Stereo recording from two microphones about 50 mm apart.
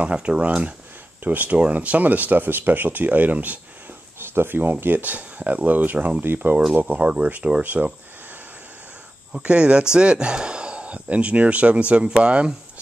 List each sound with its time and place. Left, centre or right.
0.0 s speech: right
4.2 s speech: right
6.2 s speech: right
9.3 s speech: right